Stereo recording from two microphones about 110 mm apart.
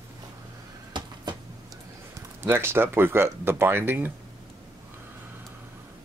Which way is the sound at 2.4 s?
20° right (ahead or behind).